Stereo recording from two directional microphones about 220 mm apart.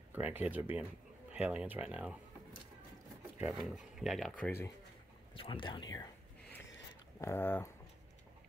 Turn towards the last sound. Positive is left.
turn(degrees=10)  # may be behind; listen again after turning